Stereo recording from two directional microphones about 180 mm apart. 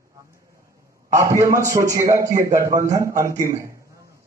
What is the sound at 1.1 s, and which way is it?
A man's voice, 15° right (ahead or behind).